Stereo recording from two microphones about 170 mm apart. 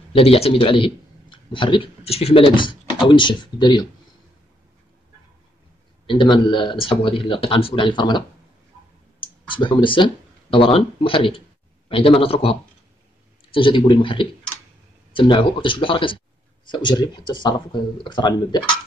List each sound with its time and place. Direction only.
0.1 s a man's voice: 35° left (ahead or behind)
6.0 s speech: 30° left (ahead or behind)
9.2 s speech: 30° left (ahead or behind)